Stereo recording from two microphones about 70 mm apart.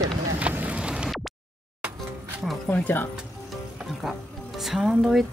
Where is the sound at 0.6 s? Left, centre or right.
Centre.